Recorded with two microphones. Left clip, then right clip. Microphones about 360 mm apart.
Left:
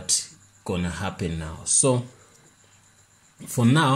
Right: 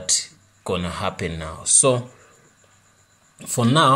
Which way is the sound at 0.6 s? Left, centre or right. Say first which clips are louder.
Right 5 dB; right.